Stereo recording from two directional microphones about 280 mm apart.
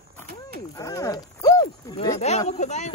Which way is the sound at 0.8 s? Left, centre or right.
Centre.